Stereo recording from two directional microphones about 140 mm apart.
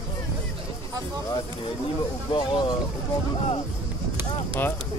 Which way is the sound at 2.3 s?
35° left (ahead or behind).